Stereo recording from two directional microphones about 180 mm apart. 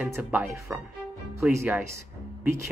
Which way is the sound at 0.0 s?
10° right (ahead or behind).